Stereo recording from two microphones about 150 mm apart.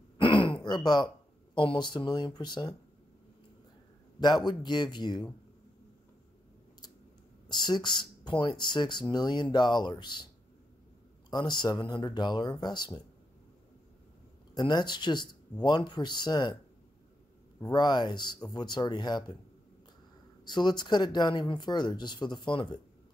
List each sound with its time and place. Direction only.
0.2 s speech: 35° left (ahead or behind)
4.2 s speech: 30° left (ahead or behind)
7.4 s speech: 30° left (ahead or behind)
14.5 s speech: 30° left (ahead or behind)
17.6 s speech: 30° left (ahead or behind)
20.4 s speech: 30° left (ahead or behind)